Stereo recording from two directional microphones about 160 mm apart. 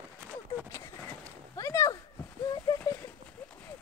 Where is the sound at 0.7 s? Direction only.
20° left (ahead or behind).